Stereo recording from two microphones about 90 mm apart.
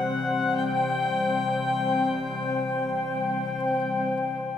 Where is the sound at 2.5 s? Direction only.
40° left (ahead or behind).